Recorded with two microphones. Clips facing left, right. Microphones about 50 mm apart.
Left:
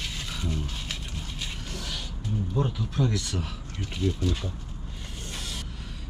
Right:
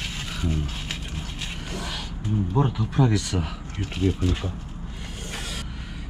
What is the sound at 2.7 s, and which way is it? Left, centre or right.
Speech, right.